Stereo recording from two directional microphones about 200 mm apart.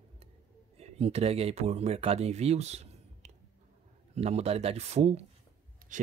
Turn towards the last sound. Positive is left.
turn(degrees=-40)  # may be behind; listen again after turning